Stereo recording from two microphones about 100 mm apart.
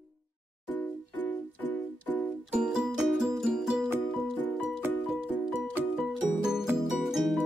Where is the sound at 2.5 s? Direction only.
5° right (ahead or behind).